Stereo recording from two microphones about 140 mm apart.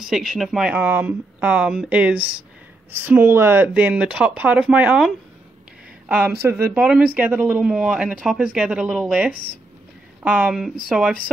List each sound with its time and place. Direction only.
0.0 s speech: 5° right (ahead or behind)
9.3 s speech: 80° left
10.2 s speech: 10° right (ahead or behind)